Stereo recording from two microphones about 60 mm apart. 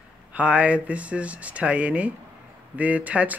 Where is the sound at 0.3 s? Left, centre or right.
Right.